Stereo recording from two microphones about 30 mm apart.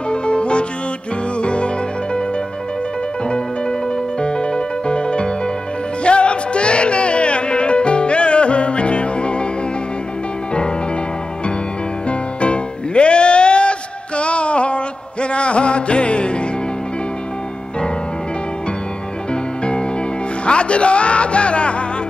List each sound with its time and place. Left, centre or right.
0.1 s music: left
3.3 s music: left
12.1 s music: left
19.6 s music: left